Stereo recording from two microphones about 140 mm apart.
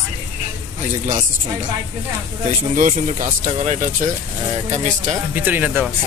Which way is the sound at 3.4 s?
50° right (ahead or behind).